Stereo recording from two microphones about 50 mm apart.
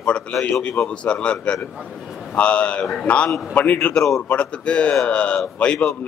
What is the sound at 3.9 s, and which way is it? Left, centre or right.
Speech, centre.